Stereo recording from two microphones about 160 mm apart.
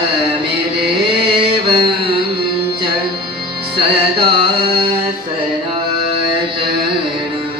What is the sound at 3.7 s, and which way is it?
Music, 30° right (ahead or behind).